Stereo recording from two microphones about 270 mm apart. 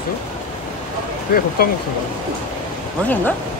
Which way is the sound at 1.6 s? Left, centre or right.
Left.